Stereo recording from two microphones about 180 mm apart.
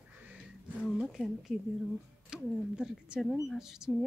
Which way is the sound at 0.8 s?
5° left (ahead or behind).